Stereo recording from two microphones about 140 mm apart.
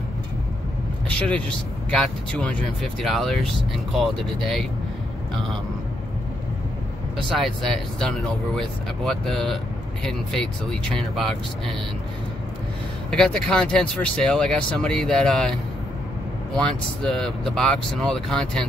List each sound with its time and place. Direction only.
1.0 s a sound: 5° left (ahead or behind)
2.0 s speech: 5° left (ahead or behind)
7.2 s speech: centre (ahead or behind)
13.1 s speech: 5° left (ahead or behind)